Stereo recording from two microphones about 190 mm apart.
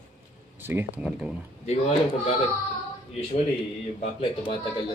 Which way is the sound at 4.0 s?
30° left (ahead or behind).